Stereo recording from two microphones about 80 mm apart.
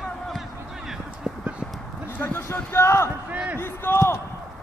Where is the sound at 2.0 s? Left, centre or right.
Left.